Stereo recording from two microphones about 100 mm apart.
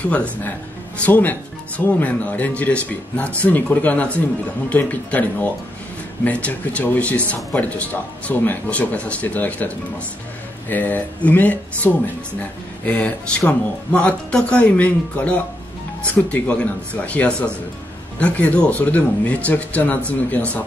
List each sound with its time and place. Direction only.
0.0 s speech: 15° left (ahead or behind)
10.7 s speech: 15° left (ahead or behind)